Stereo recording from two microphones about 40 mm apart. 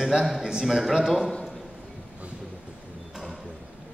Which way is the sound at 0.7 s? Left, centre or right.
Centre.